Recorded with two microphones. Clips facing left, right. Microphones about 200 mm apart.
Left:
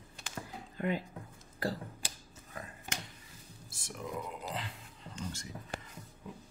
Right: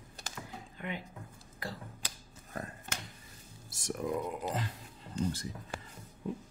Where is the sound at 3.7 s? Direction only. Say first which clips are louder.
Right 7 dB; 45° right (ahead or behind).